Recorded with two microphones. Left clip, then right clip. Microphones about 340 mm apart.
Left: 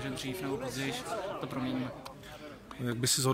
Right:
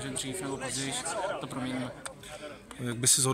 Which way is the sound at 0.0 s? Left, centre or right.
Centre.